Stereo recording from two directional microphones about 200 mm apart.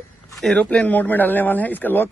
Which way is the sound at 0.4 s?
5° left (ahead or behind).